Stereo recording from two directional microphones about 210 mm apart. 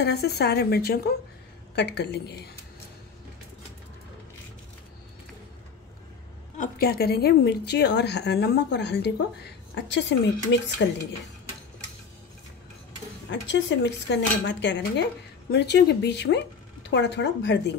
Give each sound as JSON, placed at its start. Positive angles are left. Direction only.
{"t": 0.0, "sound": "a woman's voice", "side_deg": 50}
{"t": 6.6, "sound": "a woman's voice", "side_deg": 45}
{"t": 13.3, "sound": "speech", "side_deg": 55}